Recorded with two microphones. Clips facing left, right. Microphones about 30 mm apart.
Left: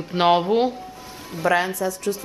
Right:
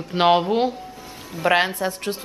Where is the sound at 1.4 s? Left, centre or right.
Right.